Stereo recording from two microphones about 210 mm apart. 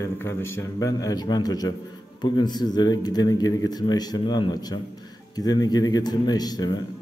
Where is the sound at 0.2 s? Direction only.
10° left (ahead or behind).